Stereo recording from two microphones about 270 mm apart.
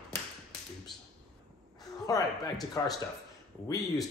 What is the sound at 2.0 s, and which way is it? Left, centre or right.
Speech, centre.